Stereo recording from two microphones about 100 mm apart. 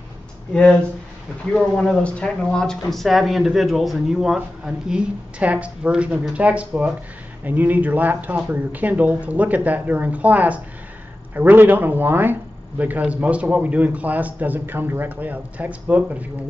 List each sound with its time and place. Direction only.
1.5 s a man's voice: 5° left (ahead or behind); by 16.3 s 15° right (ahead or behind)